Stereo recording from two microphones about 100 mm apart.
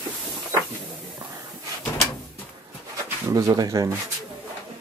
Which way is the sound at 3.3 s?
35° right (ahead or behind).